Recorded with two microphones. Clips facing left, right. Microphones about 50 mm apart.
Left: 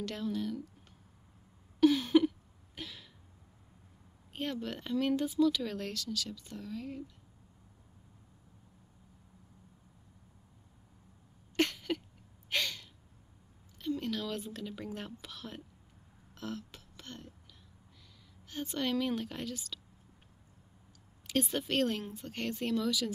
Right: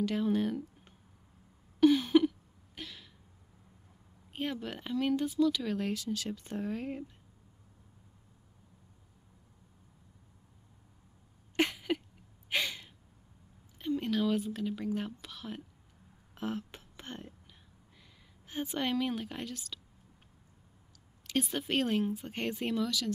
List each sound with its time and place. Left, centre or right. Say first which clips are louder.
0.3 s speech: right 5 dB; right
1.8 s a sound: right 1 dB; centre
4.3 s speech: right 1 dB; centre
5.9 s speech: right 3 dB; right
11.5 s a sound: right 1 dB; centre
12.4 s gasp: right 1 dB; centre
13.7 s a sound: right 4 dB; centre
14.4 s speech: right 6 dB; centre
16.3 s a sound: right 4 dB; right
18.5 s speech: right 1 dB; centre
21.3 s speech: even; centre
22.8 s speech: left 1 dB; centre